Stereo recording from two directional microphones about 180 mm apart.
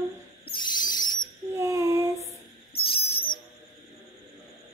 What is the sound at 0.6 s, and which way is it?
Owl, 25° left (ahead or behind).